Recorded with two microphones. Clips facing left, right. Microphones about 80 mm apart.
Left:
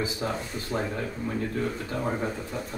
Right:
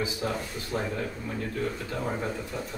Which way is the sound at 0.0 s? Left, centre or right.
Left.